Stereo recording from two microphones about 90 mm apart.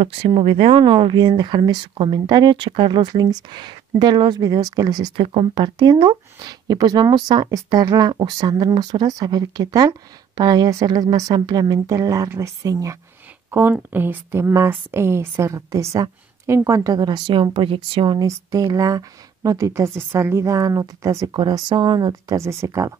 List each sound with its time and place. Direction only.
0.2 s speech: 90° right; by 5.1 s 45° right (ahead or behind)
5.1 s speech: 80° right
5.5 s speech: 50° right (ahead or behind)
13.5 s speech: 25° right (ahead or behind); by 18.2 s 65° right (ahead or behind)
18.2 s speech: 40° right (ahead or behind)
20.2 s speech: 30° right (ahead or behind)
21.3 s speech: 55° right (ahead or behind)
22.4 s speech: 35° right (ahead or behind)